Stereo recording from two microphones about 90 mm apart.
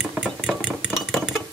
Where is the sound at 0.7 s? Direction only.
10° right (ahead or behind).